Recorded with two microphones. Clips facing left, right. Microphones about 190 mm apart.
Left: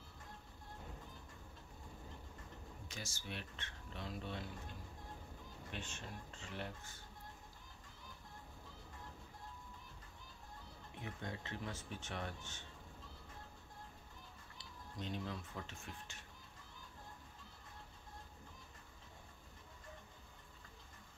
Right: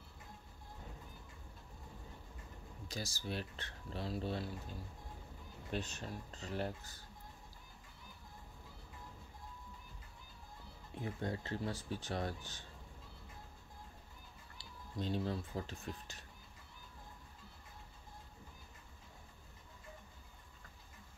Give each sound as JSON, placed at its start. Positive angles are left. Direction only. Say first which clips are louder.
{"t": 2.9, "sound": "speech", "louder": "right 7 dB", "side_deg": -35}
{"t": 5.7, "sound": "speech", "louder": "right 8 dB", "side_deg": -40}
{"t": 11.0, "sound": "speech", "louder": "right 7 dB", "side_deg": -35}
{"t": 14.6, "sound": "speech", "louder": "right 6 dB", "side_deg": -35}